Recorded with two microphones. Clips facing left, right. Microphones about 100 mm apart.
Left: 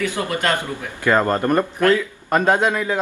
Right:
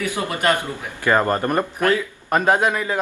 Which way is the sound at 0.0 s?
15° right (ahead or behind).